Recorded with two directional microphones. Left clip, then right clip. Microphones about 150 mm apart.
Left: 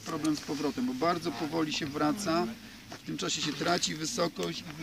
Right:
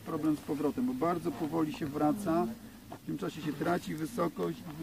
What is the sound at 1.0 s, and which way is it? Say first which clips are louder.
Speech: left 3 dB; centre (ahead or behind).